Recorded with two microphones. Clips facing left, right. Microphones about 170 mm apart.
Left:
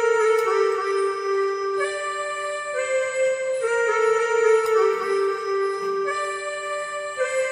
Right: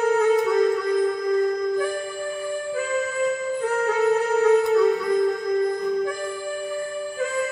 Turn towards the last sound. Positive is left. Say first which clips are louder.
# right 1 dB
turn(degrees=-45)  # may be behind; listen again after turning